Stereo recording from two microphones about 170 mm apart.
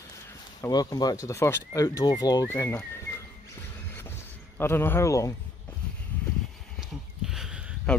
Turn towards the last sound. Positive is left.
turn(degrees=0)  # may be behind; listen again after turning